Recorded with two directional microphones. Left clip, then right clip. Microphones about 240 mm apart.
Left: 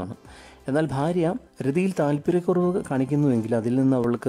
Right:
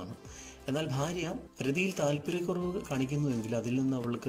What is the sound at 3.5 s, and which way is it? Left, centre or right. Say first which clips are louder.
Speech: left 8 dB; left.